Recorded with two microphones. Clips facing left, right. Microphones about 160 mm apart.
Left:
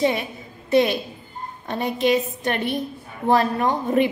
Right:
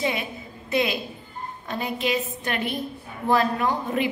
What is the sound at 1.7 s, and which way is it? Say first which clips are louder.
Speech: left 6 dB; 40° left (ahead or behind).